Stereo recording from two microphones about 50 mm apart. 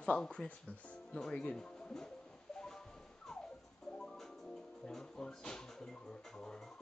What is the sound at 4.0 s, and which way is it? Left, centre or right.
Music, centre.